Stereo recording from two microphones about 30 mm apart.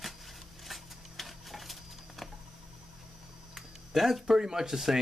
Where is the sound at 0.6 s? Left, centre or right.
Centre.